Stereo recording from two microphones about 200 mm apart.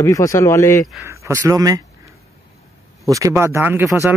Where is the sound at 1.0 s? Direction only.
15° right (ahead or behind).